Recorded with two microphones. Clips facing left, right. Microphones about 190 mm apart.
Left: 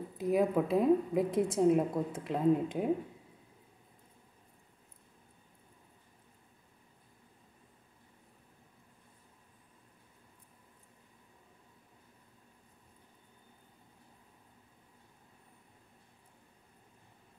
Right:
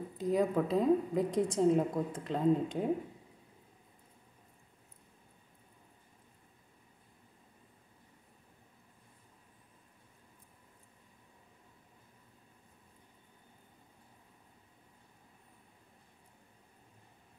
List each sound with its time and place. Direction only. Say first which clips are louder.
0.2 s a woman's voice: left 1 dB; 5° left (ahead or behind)